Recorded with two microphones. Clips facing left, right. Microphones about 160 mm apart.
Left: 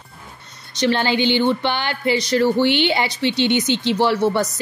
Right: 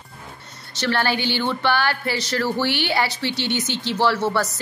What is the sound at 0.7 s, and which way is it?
A woman's voice, 20° left (ahead or behind).